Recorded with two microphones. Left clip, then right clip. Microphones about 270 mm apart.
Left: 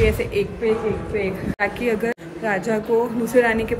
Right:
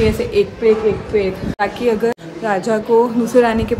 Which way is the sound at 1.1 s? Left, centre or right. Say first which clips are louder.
Right 6 dB; centre.